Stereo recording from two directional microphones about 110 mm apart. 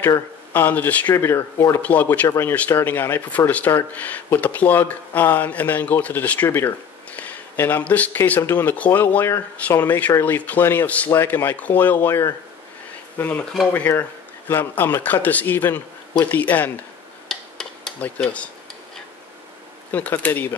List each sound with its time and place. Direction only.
0.5 s speech: 15° left (ahead or behind)
1.1 s speech: 25° left (ahead or behind)
1.8 s speech: 15° left (ahead or behind)
17.3 s a sound: 5° left (ahead or behind)
19.9 s speech: 15° left (ahead or behind)